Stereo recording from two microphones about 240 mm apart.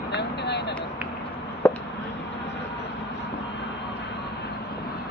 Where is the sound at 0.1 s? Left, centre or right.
Left.